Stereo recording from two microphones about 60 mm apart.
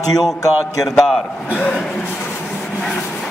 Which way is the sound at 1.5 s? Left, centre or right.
Centre.